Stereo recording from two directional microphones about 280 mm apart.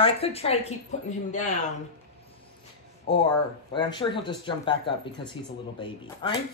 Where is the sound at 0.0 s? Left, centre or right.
Left.